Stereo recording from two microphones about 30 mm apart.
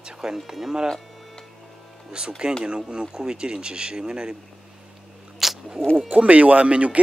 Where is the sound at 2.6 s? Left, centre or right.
Right.